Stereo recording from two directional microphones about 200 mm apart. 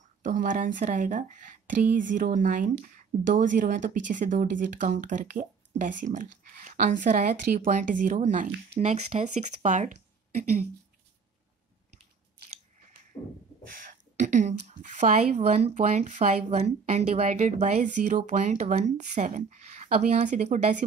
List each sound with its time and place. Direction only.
0.2 s speech: 40° right (ahead or behind)
13.1 s beatboxing: 10° left (ahead or behind)
14.2 s speech: 35° right (ahead or behind)